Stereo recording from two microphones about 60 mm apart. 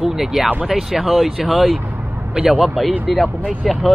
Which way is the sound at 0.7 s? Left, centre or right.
Centre.